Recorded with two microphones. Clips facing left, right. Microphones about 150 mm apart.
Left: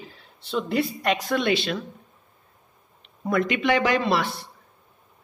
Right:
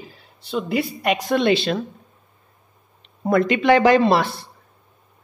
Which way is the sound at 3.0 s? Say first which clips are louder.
Right 5 dB; 35° right (ahead or behind).